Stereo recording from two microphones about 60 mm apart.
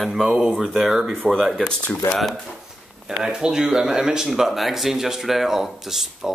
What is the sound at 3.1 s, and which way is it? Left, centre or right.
Speech, centre.